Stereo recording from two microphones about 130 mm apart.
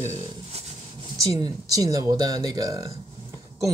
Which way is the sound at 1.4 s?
30° right (ahead or behind).